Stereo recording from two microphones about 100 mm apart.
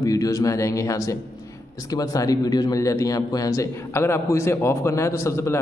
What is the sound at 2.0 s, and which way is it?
A man's voice, 40° left (ahead or behind).